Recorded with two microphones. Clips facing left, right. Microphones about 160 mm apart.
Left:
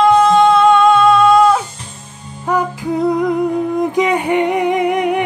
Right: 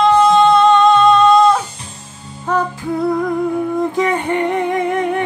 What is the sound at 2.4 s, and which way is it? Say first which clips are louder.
Humming: left 1 dB; 15° left (ahead or behind).